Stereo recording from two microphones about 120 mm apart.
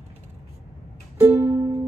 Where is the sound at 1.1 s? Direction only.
15° right (ahead or behind).